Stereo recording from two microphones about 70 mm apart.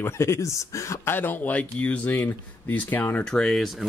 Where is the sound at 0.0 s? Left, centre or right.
Left.